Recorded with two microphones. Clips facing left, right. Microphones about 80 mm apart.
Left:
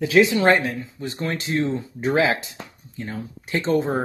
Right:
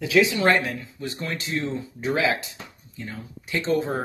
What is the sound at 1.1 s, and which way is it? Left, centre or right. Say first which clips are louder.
Speech: left 6 dB; left.